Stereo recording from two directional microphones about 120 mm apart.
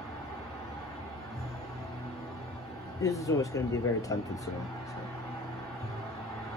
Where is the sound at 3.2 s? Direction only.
30° left (ahead or behind).